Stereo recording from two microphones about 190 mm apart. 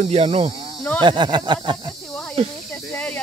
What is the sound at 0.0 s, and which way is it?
Speech, 35° right (ahead or behind).